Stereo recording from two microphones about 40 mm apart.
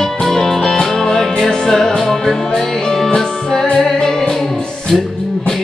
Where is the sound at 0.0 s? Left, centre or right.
Centre.